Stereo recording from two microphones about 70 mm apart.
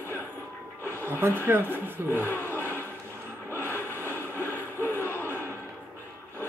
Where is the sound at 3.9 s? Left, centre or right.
Left.